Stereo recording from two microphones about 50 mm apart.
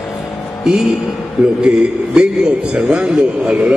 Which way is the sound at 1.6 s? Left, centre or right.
Centre.